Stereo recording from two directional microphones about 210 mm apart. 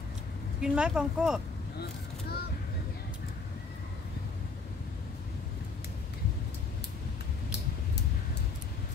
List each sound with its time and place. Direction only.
0.6 s speech: 5° right (ahead or behind)
1.8 s vehicle: 50° left (ahead or behind)